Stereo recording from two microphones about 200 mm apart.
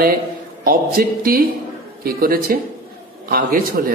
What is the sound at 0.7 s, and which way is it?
Speech, 45° right (ahead or behind).